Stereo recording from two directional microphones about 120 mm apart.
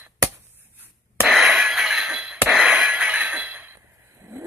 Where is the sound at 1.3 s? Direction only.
Centre (ahead or behind).